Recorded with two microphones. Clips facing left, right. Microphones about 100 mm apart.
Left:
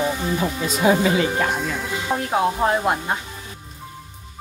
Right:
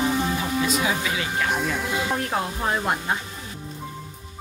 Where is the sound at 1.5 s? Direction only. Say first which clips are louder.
Even; centre (ahead or behind).